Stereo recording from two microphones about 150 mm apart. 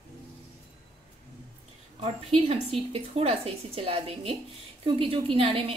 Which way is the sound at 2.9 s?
40° right (ahead or behind).